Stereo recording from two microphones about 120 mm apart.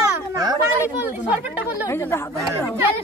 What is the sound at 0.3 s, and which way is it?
Children playing, 25° right (ahead or behind).